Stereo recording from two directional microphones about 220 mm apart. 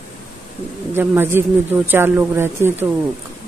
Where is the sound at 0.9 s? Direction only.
10° right (ahead or behind).